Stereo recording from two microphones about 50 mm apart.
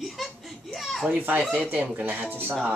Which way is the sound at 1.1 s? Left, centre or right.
Right.